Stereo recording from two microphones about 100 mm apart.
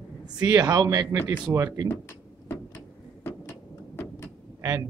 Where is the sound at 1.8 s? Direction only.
20° left (ahead or behind).